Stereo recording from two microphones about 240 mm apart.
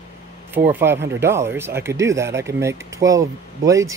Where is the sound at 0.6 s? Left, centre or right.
Centre.